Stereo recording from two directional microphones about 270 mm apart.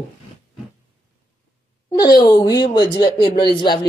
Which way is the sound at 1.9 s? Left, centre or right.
Centre.